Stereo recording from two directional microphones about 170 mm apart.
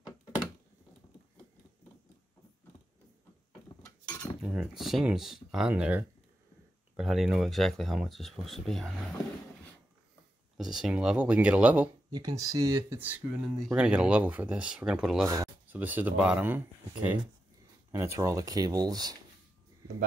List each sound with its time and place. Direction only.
4.2 s speech: 5° right (ahead or behind)
10.6 s speech: 5° right (ahead or behind)
12.1 s speech: 20° right (ahead or behind); by 15.2 s 5° right (ahead or behind)
15.2 s speech: 20° right (ahead or behind)